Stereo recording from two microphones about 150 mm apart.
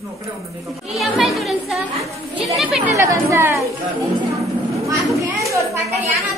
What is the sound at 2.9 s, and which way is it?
Chatter, 20° right (ahead or behind).